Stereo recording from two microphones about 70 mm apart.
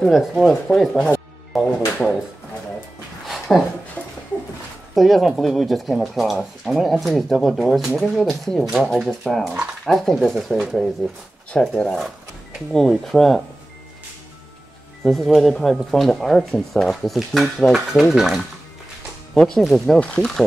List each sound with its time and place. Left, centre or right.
0.0 s speech: centre
1.5 s music: centre
2.0 s a sound: centre
3.3 s a sound: centre
4.0 s dog: left
4.9 s speech: centre
15.0 s speech: centre
19.3 s speech: centre
19.6 s speech: centre
20.0 s speech: centre